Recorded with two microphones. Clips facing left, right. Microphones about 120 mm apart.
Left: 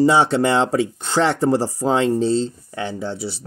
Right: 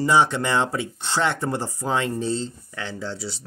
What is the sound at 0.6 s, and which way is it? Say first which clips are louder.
Speech: left 7 dB; 40° left (ahead or behind).